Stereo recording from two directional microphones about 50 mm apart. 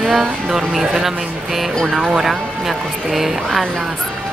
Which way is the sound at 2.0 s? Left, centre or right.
Centre.